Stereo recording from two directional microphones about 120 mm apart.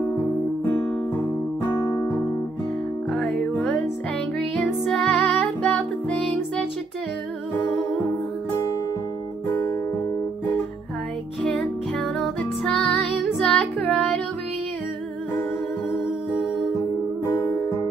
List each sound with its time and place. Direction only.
1.6 s music: 35° left (ahead or behind)
3.1 s music: centre (ahead or behind)
11.4 s music: centre (ahead or behind)
17.4 s music: 25° left (ahead or behind)